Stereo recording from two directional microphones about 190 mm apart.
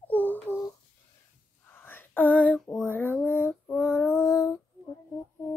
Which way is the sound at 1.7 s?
10° left (ahead or behind).